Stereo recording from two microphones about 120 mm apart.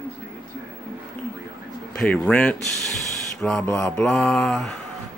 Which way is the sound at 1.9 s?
5° left (ahead or behind).